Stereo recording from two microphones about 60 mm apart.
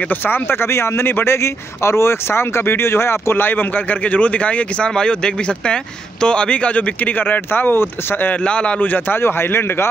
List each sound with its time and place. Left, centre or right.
0.1 s a man's voice: left
8.5 s speech: centre
9.2 s a man's voice: left